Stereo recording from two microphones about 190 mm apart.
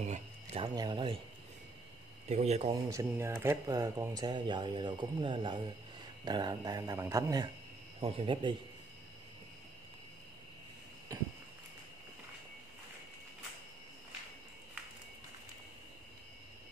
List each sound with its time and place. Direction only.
0.0 s a sound: 35° right (ahead or behind)
0.7 s speech: 25° right (ahead or behind)
2.2 s speech: 35° right (ahead or behind)
2.7 s speech: 15° right (ahead or behind)
8.0 s speech: 25° right (ahead or behind)